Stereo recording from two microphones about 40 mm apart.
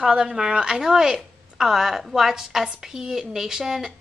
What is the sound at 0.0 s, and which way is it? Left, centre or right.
A woman's voice, right.